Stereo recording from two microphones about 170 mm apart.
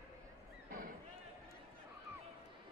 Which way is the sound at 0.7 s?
55° right (ahead or behind).